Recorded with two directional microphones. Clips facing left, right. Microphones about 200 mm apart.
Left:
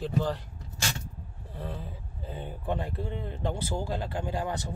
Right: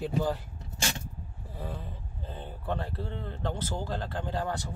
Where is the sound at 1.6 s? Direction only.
Centre (ahead or behind).